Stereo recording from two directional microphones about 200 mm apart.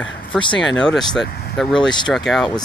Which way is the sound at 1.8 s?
20° left (ahead or behind).